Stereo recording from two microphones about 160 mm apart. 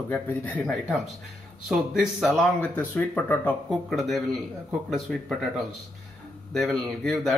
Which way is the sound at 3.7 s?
Centre (ahead or behind).